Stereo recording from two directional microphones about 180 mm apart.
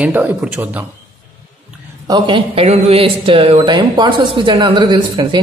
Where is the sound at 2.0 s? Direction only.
25° right (ahead or behind).